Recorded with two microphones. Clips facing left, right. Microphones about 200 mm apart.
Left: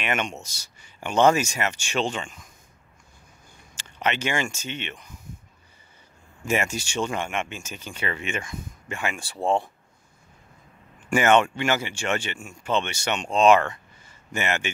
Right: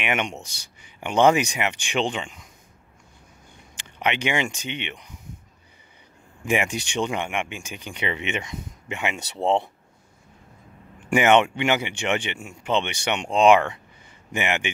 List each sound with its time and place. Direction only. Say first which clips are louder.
0.0 s speech: right 1 dB; 15° right (ahead or behind)
3.7 s speech: right 1 dB; 15° right (ahead or behind)
6.4 s speech: right 1 dB; 15° right (ahead or behind)
11.1 s speech: right 1 dB; 15° right (ahead or behind)